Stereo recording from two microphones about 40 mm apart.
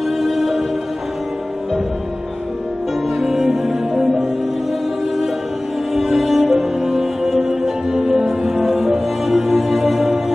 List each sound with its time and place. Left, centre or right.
0.2 s music: centre
3.2 s music: centre
5.9 s music: centre